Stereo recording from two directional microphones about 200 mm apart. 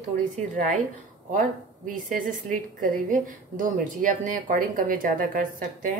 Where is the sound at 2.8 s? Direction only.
40° right (ahead or behind).